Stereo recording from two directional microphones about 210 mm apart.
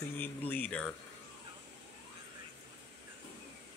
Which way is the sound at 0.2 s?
10° left (ahead or behind).